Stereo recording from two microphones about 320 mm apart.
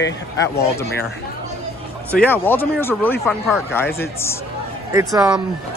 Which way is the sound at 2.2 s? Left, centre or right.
Centre.